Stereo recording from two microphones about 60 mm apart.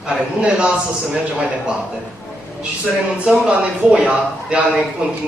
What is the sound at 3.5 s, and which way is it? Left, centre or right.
Speech, centre.